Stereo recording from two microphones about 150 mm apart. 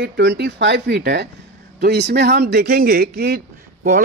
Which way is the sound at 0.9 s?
90° right.